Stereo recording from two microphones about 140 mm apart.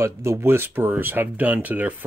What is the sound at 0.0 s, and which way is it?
Speech, 20° right (ahead or behind).